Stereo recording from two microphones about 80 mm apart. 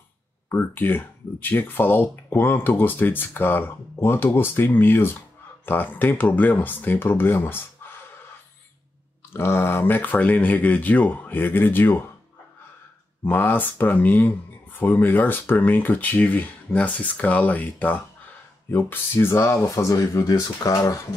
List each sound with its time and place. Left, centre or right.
0.5 s speech: left
9.3 s speech: left
13.2 s speech: left